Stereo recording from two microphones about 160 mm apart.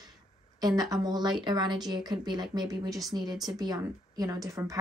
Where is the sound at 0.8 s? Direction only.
25° right (ahead or behind).